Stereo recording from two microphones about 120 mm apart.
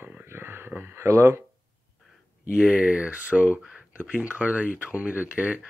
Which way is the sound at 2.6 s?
10° right (ahead or behind).